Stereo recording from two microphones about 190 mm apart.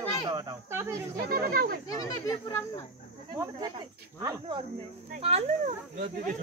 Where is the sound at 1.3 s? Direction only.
50° right (ahead or behind).